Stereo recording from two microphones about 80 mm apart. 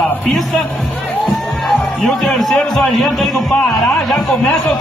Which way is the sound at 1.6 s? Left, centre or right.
Centre.